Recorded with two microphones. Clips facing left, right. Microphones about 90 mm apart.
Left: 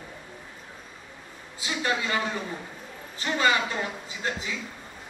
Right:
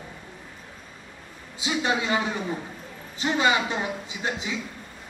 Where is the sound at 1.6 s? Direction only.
20° right (ahead or behind).